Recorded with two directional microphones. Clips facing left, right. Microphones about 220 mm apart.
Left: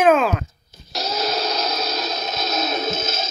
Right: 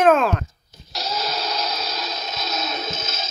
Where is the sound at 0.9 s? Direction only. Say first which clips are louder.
Left 3 dB; 45° left (ahead or behind).